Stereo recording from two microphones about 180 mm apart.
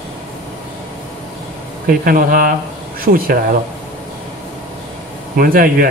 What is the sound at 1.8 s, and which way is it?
Speech, 50° right (ahead or behind).